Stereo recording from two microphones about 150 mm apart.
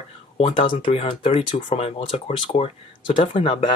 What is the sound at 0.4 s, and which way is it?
Speech, 35° left (ahead or behind).